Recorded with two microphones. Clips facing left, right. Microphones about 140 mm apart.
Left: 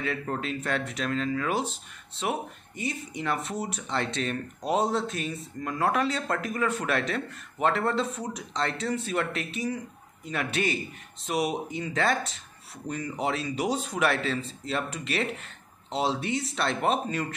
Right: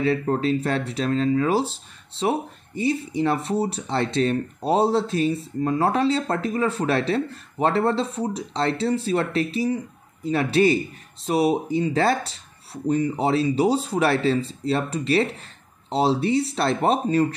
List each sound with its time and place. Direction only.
0.0 s speech: 35° right (ahead or behind)